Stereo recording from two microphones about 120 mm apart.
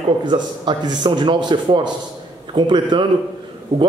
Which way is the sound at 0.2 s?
40° right (ahead or behind).